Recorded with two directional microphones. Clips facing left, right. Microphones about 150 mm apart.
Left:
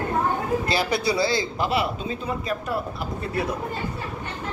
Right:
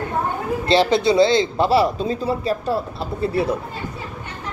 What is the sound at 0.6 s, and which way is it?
Speech, 25° right (ahead or behind).